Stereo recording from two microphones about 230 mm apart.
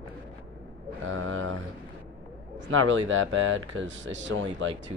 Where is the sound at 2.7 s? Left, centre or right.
Right.